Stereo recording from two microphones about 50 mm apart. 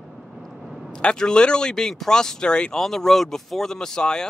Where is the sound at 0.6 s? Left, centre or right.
Centre.